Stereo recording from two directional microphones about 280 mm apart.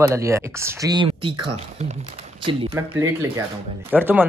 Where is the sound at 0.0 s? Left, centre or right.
Centre.